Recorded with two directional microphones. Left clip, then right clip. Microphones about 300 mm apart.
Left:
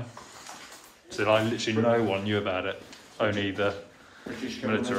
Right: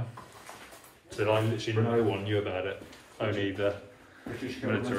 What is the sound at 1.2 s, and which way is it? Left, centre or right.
Speech, centre.